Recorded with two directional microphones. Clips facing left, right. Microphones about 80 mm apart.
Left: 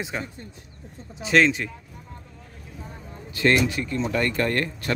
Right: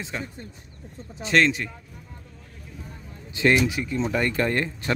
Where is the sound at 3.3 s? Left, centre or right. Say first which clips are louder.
Even; centre.